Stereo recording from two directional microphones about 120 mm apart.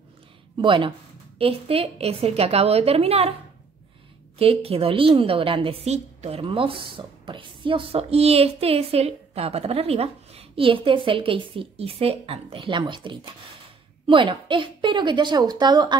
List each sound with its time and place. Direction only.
0.6 s a woman's voice: 45° right (ahead or behind)
4.4 s speech: 55° right (ahead or behind)
6.4 s a woman's voice: 45° right (ahead or behind)